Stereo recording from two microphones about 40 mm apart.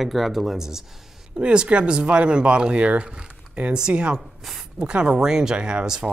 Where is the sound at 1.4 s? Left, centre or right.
Right.